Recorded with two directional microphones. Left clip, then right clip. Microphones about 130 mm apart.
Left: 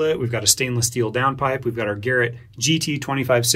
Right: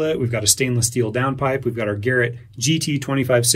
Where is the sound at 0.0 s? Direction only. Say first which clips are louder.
Even; 45° left (ahead or behind).